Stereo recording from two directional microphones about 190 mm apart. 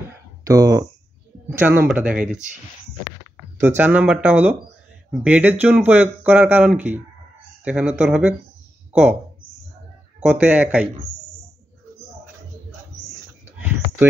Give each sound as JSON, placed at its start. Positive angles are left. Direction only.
{"t": 0.4, "sound": "speech", "side_deg": -20}
{"t": 3.5, "sound": "speech", "side_deg": -10}
{"t": 10.2, "sound": "speech", "side_deg": -10}